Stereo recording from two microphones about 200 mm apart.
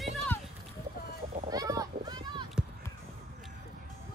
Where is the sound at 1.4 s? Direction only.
20° right (ahead or behind).